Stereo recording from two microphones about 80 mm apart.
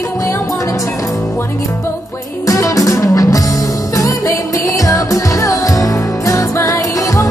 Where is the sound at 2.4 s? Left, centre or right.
Left.